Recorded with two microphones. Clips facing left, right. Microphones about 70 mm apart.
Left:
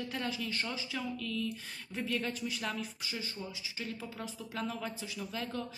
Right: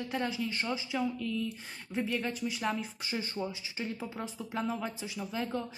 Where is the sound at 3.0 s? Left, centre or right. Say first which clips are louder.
Right 6 dB; right.